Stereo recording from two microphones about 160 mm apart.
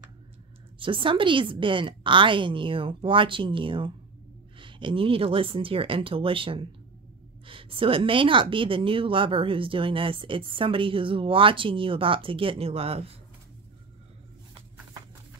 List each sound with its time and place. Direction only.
0.7 s speech: 30° right (ahead or behind)